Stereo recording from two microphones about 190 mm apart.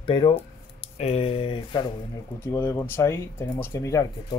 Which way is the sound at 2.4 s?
15° left (ahead or behind).